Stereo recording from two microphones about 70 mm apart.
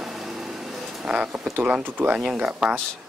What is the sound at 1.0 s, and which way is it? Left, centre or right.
Speech, centre.